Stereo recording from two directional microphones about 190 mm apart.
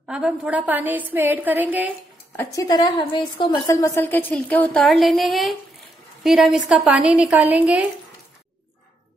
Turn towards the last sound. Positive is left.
turn(degrees=-5)  # may be behind; listen again after turning